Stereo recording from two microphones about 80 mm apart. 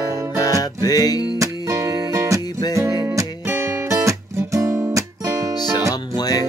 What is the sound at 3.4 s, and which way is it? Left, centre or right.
Guitar, right.